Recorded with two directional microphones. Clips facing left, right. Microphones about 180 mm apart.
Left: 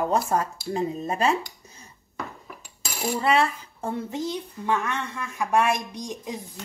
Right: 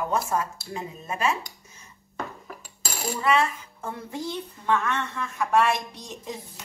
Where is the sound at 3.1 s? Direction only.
35° left (ahead or behind).